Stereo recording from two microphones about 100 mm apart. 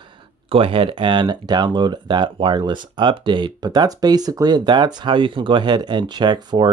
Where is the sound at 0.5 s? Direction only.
65° right (ahead or behind).